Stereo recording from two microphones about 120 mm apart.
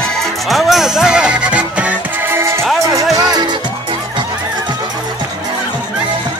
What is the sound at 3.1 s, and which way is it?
Music, 35° right (ahead or behind).